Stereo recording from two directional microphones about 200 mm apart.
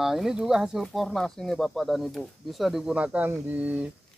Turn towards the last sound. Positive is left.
turn(degrees=-5)  # may be behind; listen again after turning